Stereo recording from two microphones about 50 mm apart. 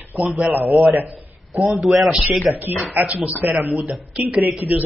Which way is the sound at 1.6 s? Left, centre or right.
Centre.